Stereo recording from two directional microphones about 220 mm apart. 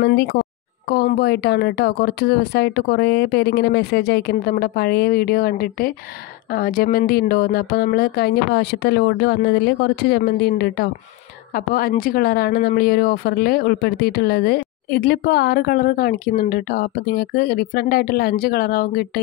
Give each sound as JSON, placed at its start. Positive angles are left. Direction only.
{"t": 0.0, "sound": "speech", "side_deg": 45}